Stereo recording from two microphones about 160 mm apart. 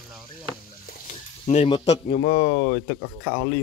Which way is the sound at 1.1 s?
45° left (ahead or behind).